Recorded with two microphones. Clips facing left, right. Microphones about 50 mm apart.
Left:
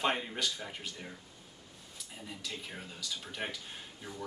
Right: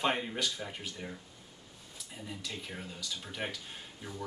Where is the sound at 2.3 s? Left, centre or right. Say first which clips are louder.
Right 1 dB; centre.